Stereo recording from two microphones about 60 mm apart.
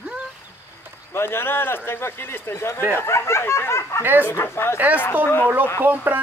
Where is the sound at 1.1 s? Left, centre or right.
Left.